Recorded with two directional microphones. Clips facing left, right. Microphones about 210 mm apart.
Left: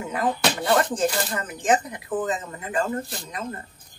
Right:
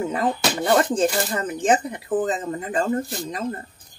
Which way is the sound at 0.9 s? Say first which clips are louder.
Right 3 dB; 25° right (ahead or behind).